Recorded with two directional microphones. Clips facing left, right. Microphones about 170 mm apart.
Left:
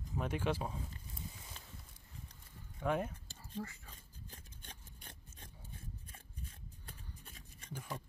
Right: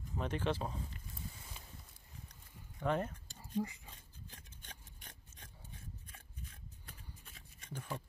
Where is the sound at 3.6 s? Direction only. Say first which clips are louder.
Right 6 dB; 15° right (ahead or behind).